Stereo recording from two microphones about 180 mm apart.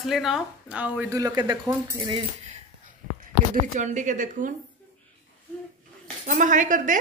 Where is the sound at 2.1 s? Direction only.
40° right (ahead or behind).